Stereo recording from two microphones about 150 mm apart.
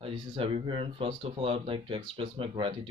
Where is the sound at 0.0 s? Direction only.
35° right (ahead or behind).